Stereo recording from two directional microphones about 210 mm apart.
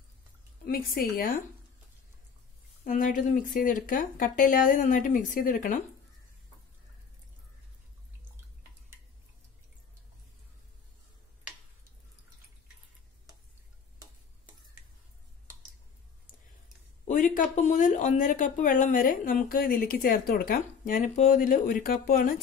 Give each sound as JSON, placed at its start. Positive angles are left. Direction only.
{"t": 0.7, "sound": "a woman's voice", "side_deg": 40}
{"t": 2.8, "sound": "speech", "side_deg": 40}
{"t": 17.0, "sound": "speech", "side_deg": 40}